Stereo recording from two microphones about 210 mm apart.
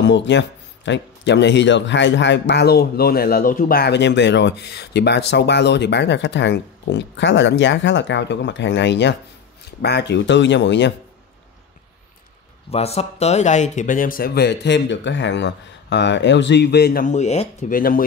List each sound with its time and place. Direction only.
0.0 s speech: 55° left (ahead or behind)
12.7 s speech: 30° left (ahead or behind)